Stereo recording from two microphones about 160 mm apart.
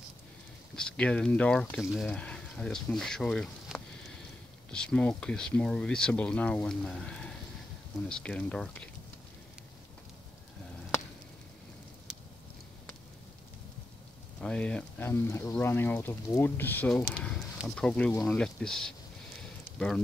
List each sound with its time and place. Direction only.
0.7 s speech: 5° left (ahead or behind)
14.4 s speech: 5° left (ahead or behind)